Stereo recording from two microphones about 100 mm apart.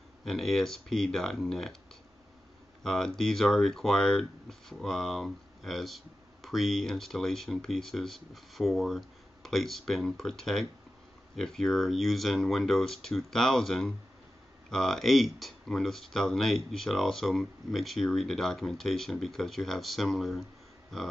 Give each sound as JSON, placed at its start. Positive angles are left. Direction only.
{"t": 0.2, "sound": "speech", "side_deg": 0}
{"t": 2.8, "sound": "speech", "side_deg": 5}